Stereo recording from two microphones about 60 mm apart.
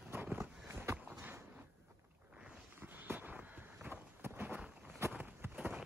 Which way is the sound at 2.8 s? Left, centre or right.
Right.